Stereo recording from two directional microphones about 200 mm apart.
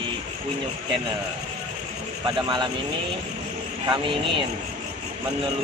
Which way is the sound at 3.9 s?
25° right (ahead or behind).